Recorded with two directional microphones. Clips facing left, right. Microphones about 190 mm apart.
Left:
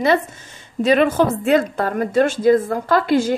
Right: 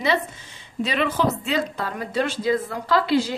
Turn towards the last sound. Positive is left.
turn(degrees=50)  # may be behind; listen again after turning